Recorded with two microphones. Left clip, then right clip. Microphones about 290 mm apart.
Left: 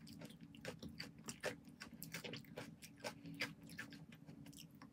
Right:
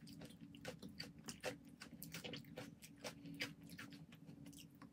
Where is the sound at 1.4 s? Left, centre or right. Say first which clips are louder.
Left 2 dB; centre.